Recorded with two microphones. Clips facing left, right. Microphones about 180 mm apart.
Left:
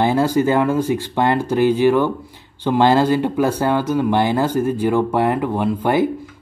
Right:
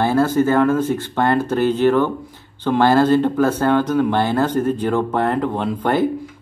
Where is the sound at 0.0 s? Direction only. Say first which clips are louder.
Even; 15° left (ahead or behind).